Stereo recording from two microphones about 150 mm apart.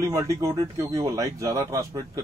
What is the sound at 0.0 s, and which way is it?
Speech, 20° right (ahead or behind).